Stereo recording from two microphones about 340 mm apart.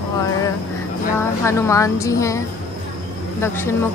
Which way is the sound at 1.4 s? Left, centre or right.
Centre.